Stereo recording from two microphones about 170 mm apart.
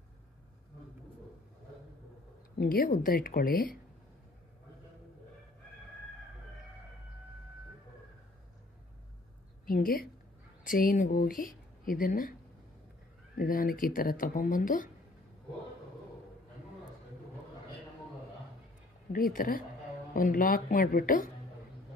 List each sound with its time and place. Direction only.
2.6 s speech: 55° left (ahead or behind)
9.7 s a woman's voice: 55° left (ahead or behind)
13.4 s speech: 55° left (ahead or behind)
19.3 s speech: 55° left (ahead or behind)